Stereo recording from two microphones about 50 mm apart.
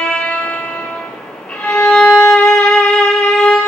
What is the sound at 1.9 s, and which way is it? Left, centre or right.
Violin, centre.